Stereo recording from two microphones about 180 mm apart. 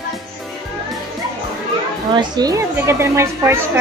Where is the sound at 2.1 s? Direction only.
25° right (ahead or behind).